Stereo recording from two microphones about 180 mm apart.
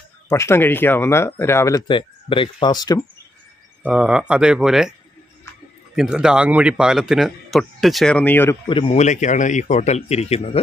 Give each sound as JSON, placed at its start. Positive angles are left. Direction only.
{"t": 0.3, "sound": "speech", "side_deg": 15}
{"t": 1.9, "sound": "speech", "side_deg": 30}
{"t": 3.8, "sound": "a man's voice", "side_deg": -5}
{"t": 5.9, "sound": "a man's voice", "side_deg": -5}
{"t": 8.6, "sound": "speech", "side_deg": 30}
{"t": 9.0, "sound": "speech", "side_deg": 40}